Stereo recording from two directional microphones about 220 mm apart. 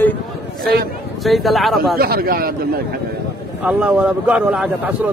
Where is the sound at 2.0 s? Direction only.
40° right (ahead or behind).